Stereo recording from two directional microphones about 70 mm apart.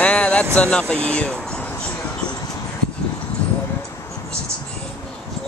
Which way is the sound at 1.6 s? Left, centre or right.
Left.